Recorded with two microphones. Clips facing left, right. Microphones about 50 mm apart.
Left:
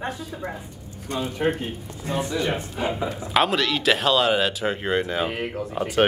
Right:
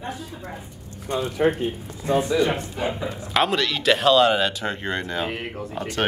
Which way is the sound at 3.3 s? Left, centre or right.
Centre.